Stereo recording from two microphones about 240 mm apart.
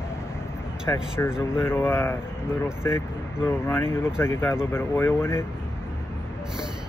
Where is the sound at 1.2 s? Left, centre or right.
Centre.